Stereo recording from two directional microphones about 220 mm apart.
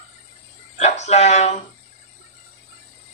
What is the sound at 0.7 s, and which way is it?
Speech, 30° left (ahead or behind).